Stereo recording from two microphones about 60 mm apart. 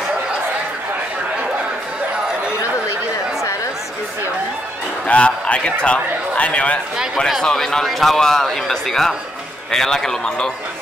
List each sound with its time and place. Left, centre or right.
5.0 s a man's voice: centre
7.4 s a man's voice: centre